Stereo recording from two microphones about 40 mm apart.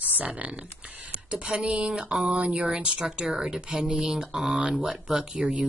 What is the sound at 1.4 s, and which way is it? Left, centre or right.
Speech, right.